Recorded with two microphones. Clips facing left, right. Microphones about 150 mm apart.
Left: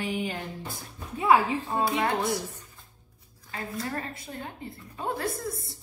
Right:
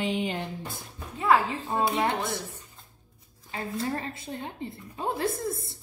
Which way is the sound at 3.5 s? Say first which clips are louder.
Right 3 dB; 20° right (ahead or behind).